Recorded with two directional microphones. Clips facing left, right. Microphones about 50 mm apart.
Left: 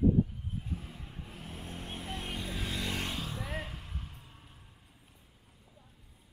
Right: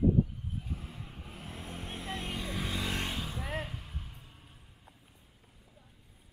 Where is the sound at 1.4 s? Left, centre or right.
Right.